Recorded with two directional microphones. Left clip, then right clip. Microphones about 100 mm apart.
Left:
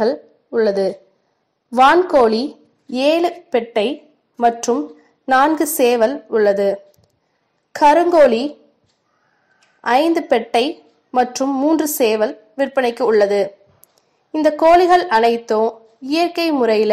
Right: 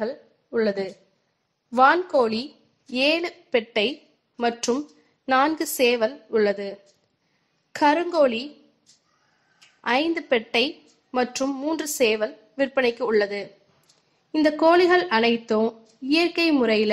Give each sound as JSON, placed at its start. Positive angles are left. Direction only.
{"t": 0.0, "sound": "a woman's voice", "side_deg": 40}
{"t": 3.5, "sound": "a woman's voice", "side_deg": 35}
{"t": 5.6, "sound": "a woman's voice", "side_deg": 45}
{"t": 7.7, "sound": "a woman's voice", "side_deg": 45}
{"t": 9.6, "sound": "a sound", "side_deg": 30}
{"t": 10.3, "sound": "a woman's voice", "side_deg": 30}
{"t": 14.6, "sound": "a woman's voice", "side_deg": 45}